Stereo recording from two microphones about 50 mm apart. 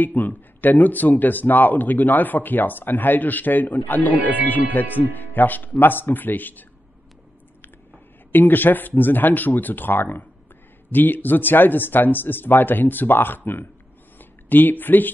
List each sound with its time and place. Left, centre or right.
0.0 s a man's voice: left
8.3 s a man's voice: left
14.1 s a sound: left